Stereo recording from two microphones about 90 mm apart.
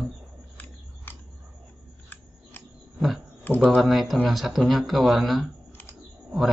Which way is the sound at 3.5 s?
20° left (ahead or behind).